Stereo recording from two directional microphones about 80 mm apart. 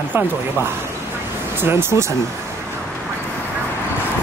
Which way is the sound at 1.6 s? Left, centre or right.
Right.